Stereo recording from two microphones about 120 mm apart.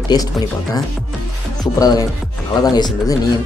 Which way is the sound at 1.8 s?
30° left (ahead or behind).